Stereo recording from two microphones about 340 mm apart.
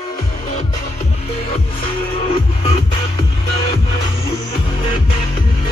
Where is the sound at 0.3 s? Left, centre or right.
Centre.